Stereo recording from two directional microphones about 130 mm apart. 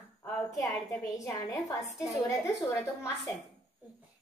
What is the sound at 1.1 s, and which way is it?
Speech, 25° left (ahead or behind).